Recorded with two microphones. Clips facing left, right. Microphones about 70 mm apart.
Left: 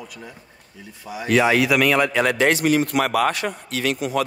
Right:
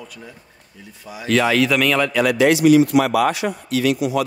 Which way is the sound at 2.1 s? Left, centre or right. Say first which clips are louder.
Right 3 dB; left.